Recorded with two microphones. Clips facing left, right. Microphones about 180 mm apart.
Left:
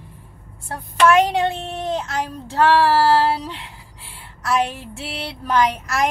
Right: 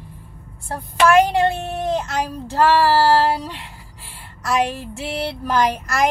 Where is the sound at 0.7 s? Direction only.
Centre (ahead or behind).